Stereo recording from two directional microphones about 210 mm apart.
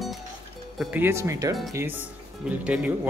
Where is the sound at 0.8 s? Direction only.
10° right (ahead or behind).